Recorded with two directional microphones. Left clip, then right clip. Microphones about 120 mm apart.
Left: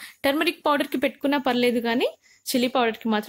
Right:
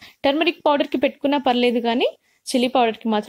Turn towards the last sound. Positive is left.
turn(degrees=-35)  # may be behind; listen again after turning